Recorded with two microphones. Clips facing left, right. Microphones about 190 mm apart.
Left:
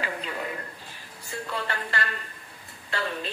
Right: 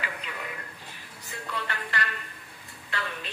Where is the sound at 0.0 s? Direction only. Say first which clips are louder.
Left 5 dB; 35° left (ahead or behind).